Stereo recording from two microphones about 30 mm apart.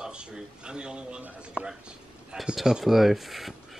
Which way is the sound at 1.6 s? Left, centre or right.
Right.